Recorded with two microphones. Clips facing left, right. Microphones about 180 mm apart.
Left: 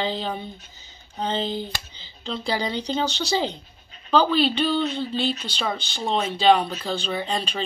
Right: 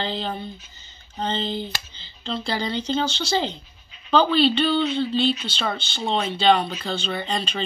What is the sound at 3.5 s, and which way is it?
Bleat, 40° left (ahead or behind).